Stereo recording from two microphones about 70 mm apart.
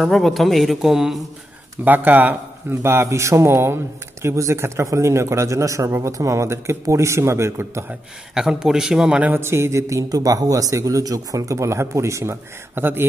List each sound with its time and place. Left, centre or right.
0.0 s a man's voice: centre
1.9 s speech: right
8.4 s a man's voice: centre
9.2 s a man's voice: right
12.7 s speech: right